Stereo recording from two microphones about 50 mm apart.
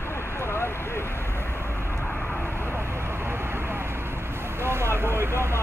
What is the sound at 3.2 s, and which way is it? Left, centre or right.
Vehicle, right.